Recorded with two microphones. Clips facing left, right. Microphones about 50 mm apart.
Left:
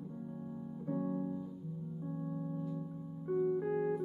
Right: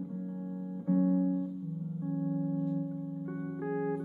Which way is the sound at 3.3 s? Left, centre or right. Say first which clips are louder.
Left 6 dB; centre.